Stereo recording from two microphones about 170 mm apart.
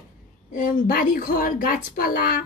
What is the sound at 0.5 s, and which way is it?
Speech, 50° left (ahead or behind).